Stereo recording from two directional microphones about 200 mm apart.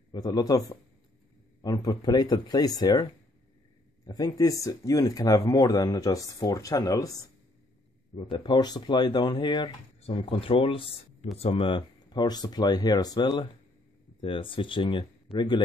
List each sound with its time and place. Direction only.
0.1 s speech: 20° left (ahead or behind)
8.2 s speech: 25° left (ahead or behind)